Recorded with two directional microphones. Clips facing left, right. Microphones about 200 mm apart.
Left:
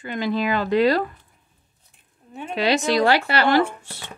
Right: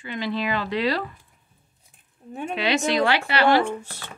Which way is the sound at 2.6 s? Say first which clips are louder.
Left 3 dB; 35° left (ahead or behind).